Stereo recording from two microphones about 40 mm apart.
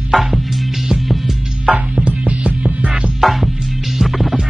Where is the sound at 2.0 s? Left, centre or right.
Right.